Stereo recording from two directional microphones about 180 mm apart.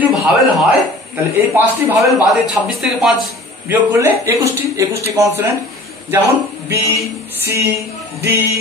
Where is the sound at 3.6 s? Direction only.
10° right (ahead or behind).